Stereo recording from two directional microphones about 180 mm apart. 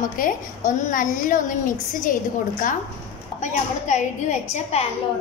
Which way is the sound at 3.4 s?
40° left (ahead or behind).